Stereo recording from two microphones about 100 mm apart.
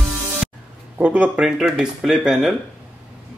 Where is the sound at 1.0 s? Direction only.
15° right (ahead or behind).